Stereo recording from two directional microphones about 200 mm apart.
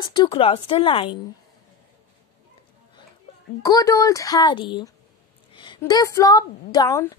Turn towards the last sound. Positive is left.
turn(degrees=15)  # may be behind; listen again after turning